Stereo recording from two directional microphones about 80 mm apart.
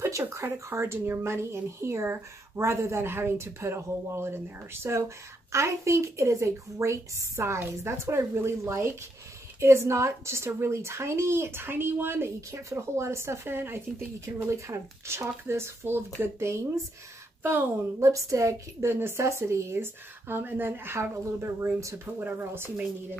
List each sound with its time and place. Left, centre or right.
0.0 s speech: right
18.0 s speech: right
22.2 s speech: right